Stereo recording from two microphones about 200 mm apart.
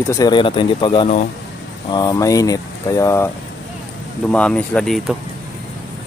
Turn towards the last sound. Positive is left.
turn(degrees=0)  # may be behind; listen again after turning